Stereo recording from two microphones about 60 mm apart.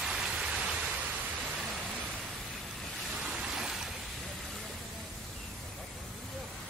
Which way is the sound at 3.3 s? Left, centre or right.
Centre.